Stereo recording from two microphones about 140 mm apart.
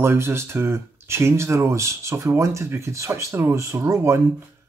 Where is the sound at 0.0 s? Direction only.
15° right (ahead or behind).